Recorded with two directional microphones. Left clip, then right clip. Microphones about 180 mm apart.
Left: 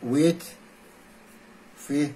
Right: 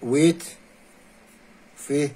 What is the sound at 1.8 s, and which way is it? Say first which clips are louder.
Speech: right 3 dB; 55° right (ahead or behind).